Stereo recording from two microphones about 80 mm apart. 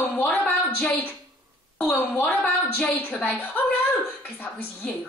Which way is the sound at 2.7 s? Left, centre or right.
Left.